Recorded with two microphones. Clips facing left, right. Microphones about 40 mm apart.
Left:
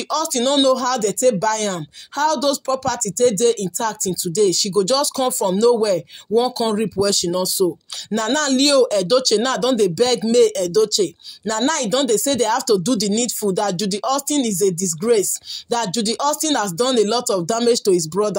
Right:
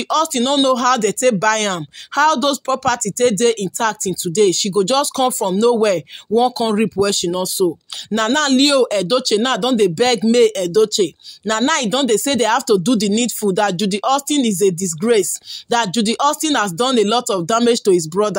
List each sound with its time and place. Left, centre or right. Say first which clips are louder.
0.3 s speech: right 1 dB; right
0.7 s speech: right 4 dB; right
2.3 s speech: right 2 dB; right
5.4 s speech: right 1 dB; centre
5.8 s speech: right 3 dB; right
6.4 s speech: right 3 dB; right
6.8 s speech: right 3 dB; right
8.5 s speech: left 1 dB; right
9.4 s speech: right 2 dB; right
11.4 s speech: right 3 dB; right
12.6 s speech: right 3 dB; right